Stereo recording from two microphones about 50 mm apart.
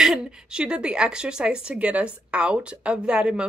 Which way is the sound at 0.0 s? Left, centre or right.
Centre.